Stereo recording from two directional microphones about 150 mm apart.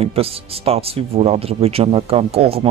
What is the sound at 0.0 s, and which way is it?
Speech, 40° right (ahead or behind).